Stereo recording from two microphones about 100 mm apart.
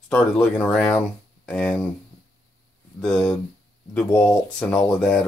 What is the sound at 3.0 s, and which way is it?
Speech, 10° left (ahead or behind).